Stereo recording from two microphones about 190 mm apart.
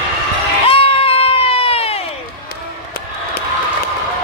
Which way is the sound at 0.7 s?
30° left (ahead or behind).